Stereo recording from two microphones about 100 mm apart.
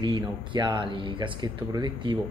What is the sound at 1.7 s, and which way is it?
Speech, 45° right (ahead or behind).